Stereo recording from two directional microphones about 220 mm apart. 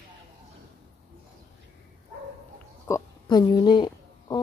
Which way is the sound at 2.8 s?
15° left (ahead or behind).